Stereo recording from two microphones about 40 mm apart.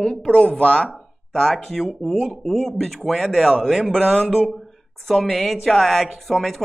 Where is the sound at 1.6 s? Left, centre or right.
Centre.